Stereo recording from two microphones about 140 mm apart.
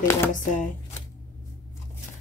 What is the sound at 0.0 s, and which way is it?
Speech, 20° left (ahead or behind).